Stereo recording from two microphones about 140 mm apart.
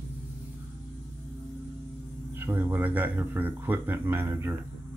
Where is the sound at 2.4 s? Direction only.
15° right (ahead or behind).